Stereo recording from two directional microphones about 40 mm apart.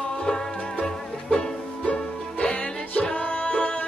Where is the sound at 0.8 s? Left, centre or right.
Centre.